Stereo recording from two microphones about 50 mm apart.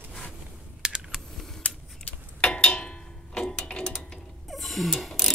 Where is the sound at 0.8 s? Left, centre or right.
Centre.